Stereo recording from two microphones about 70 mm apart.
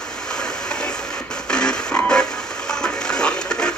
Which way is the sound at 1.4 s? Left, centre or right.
Centre.